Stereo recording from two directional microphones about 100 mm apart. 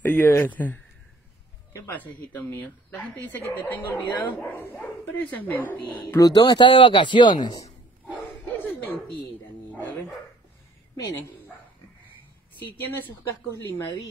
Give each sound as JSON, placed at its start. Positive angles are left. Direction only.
{"t": 0.0, "sound": "a sound", "side_deg": 15}
{"t": 0.4, "sound": "speech", "side_deg": 15}
{"t": 2.0, "sound": "speech", "side_deg": 15}
{"t": 6.1, "sound": "speech", "side_deg": 40}
{"t": 8.6, "sound": "bow-wow", "side_deg": 15}
{"t": 9.7, "sound": "dog", "side_deg": 20}